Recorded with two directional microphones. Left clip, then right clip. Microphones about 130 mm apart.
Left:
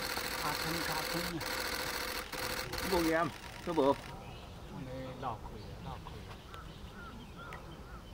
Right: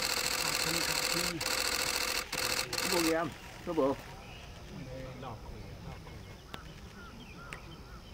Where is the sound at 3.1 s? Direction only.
35° left (ahead or behind).